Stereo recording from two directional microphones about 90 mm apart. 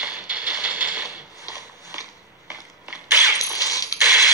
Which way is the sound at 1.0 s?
40° left (ahead or behind).